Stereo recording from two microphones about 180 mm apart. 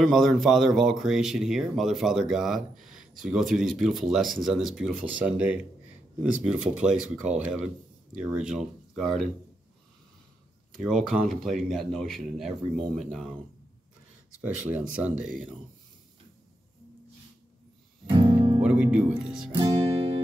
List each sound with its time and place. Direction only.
0.0 s speech: centre (ahead or behind)
10.7 s speech: centre (ahead or behind)
14.4 s speech: 5° right (ahead or behind)
18.1 s music: 25° right (ahead or behind)
18.6 s speech: 5° right (ahead or behind)